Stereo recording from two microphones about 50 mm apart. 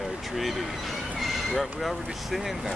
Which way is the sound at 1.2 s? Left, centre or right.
Centre.